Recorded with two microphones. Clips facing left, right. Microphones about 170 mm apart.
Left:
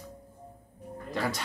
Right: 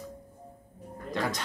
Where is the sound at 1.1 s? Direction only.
5° left (ahead or behind).